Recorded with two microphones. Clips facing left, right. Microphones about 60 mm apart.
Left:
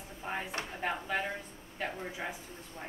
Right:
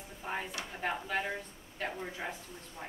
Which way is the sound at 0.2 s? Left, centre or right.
Centre.